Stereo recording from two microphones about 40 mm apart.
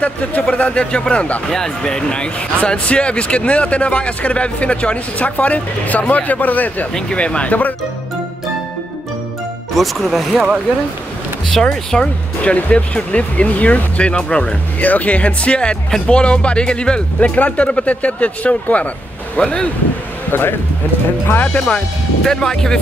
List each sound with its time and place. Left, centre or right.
0.0 s speech: left
0.9 s speech: left
6.9 s speech: centre
7.2 s speech: left
7.4 s speech: left
9.8 s speech: centre
11.6 s speech: left
12.4 s speech: left
14.8 s speech: left
20.2 s speech: left
21.5 s speech: left
22.2 s speech: centre